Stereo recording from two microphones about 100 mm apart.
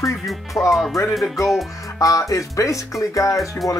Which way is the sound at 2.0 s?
35° left (ahead or behind).